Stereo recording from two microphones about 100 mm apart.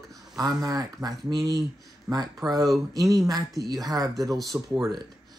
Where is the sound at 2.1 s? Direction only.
25° right (ahead or behind).